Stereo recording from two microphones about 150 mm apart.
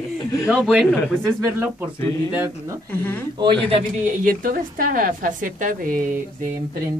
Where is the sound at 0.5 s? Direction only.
5° right (ahead or behind).